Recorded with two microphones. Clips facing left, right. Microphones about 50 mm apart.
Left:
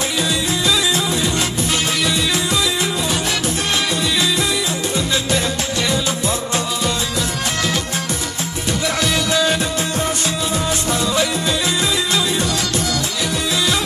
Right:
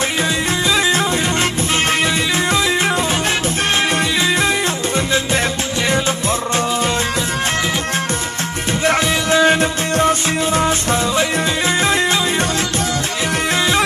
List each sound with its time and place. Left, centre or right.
0.2 s music: right
8.6 s music: right